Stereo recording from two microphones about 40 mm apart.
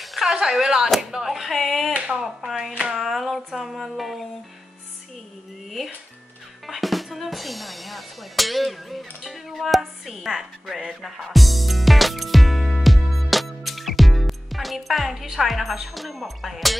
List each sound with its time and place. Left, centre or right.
0.0 s speech: centre
2.0 s a sound: right
3.0 s a sound: centre
3.5 s speech: centre
6.7 s speech: centre
10.9 s music: centre